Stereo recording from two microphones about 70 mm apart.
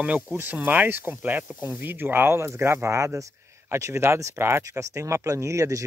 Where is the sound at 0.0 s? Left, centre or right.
Centre.